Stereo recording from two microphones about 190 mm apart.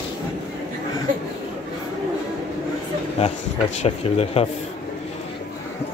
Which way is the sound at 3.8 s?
30° left (ahead or behind).